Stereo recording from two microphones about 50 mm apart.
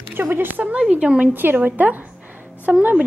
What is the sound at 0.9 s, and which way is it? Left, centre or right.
Speech, right.